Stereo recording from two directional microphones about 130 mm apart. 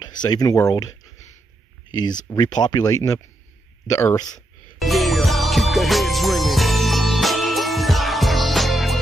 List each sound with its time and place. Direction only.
0.0 s speech: 30° left (ahead or behind)
2.2 s speech: 35° left (ahead or behind)
4.7 s music: centre (ahead or behind)